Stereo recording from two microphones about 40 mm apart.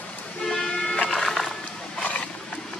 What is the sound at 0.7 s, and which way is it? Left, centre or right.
Music, left.